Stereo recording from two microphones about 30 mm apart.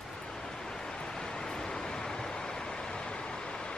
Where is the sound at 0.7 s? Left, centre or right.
Left.